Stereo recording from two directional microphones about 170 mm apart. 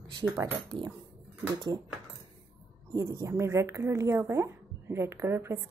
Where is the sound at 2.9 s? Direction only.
20° right (ahead or behind).